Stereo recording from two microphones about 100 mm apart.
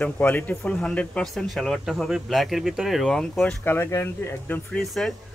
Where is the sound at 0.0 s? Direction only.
15° left (ahead or behind).